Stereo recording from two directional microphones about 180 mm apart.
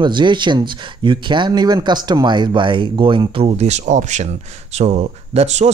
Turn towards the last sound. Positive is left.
turn(degrees=-35)  # may be behind; listen again after turning